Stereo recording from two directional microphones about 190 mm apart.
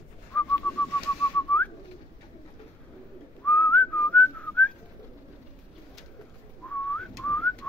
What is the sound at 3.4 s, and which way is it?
Whistling, 5° left (ahead or behind).